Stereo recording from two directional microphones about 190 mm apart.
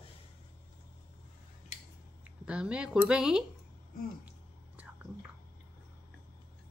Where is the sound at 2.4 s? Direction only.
5° right (ahead or behind).